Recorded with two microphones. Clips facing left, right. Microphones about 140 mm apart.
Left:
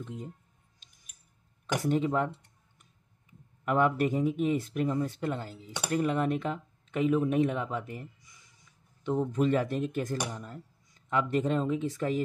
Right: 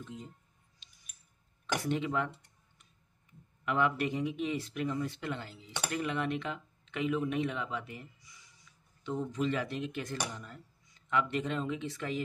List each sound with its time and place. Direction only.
0.0 s speech: 60° left (ahead or behind)
0.8 s scissors: 50° left (ahead or behind)
1.8 s speech: 40° left (ahead or behind)
3.6 s speech: 45° left (ahead or behind)